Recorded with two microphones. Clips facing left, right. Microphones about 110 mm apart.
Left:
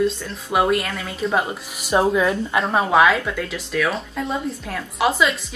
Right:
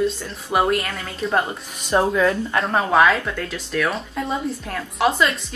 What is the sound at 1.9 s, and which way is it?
Speech, 15° left (ahead or behind).